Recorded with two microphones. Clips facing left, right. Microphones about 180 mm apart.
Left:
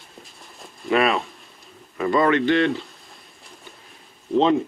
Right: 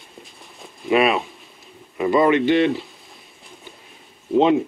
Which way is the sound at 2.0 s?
5° right (ahead or behind).